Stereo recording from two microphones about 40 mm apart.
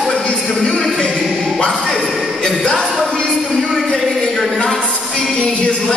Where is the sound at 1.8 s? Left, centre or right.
Centre.